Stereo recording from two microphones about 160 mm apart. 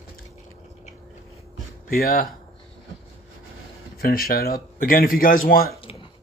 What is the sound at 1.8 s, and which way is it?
Speech, 65° left (ahead or behind).